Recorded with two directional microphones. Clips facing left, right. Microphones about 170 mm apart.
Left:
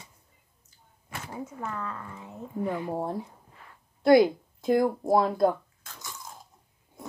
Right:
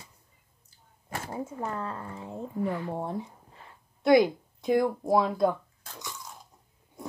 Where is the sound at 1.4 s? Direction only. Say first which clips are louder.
Left 1 dB; 30° right (ahead or behind).